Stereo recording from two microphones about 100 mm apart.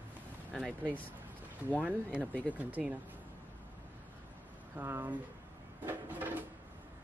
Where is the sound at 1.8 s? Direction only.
15° right (ahead or behind).